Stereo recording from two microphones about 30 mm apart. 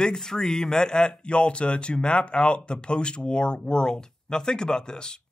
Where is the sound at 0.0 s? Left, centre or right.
Left.